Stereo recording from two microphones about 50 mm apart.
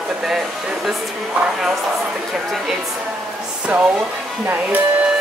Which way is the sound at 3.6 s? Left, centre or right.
Right.